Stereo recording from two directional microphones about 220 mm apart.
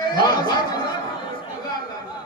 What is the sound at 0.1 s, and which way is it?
Speech, 20° left (ahead or behind).